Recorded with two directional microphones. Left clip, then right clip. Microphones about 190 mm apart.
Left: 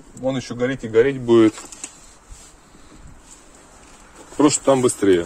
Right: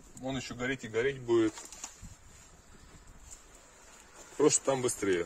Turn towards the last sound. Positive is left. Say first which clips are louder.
# left 15 dB
turn(degrees=25)  # may be behind; listen again after turning